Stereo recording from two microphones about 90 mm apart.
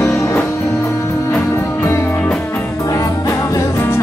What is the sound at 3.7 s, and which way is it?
Music, 25° left (ahead or behind).